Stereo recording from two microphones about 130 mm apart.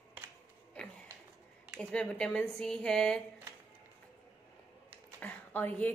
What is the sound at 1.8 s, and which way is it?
Speech, 5° left (ahead or behind).